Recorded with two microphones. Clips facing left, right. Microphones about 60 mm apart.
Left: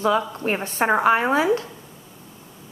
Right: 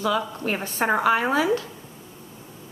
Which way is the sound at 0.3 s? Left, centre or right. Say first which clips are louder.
Left 3 dB; left.